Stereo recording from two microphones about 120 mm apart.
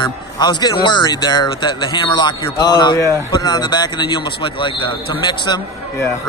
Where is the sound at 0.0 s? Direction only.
40° left (ahead or behind).